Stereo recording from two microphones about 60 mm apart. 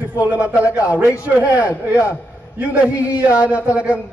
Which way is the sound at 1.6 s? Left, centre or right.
Left.